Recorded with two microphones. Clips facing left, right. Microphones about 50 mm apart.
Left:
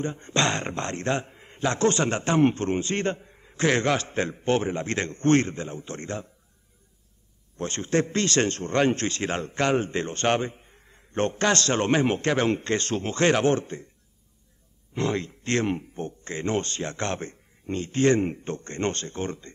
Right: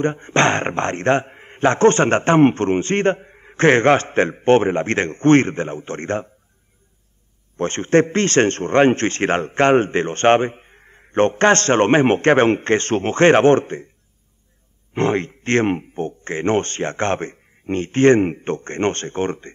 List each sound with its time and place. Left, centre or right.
0.0 s a man's voice: right
7.5 s a man's voice: right
15.0 s a man's voice: right